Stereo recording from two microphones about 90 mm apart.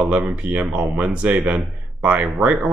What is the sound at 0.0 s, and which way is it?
Speech, 15° right (ahead or behind).